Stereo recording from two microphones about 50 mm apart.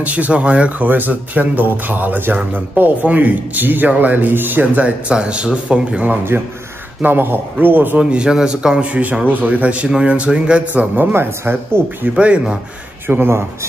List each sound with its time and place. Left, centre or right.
0.0 s speech: right
4.8 s speech: right
7.0 s speech: right
8.0 s a man's voice: centre
9.2 s speech: right
10.7 s speech: right
12.2 s speech: right
13.0 s a man's voice: right